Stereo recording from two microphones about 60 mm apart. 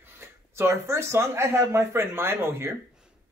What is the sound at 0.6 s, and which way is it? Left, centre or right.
A man's voice, right.